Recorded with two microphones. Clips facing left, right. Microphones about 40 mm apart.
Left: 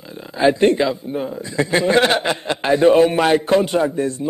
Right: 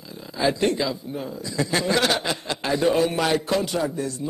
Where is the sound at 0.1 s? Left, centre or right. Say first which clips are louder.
Left 7 dB; left.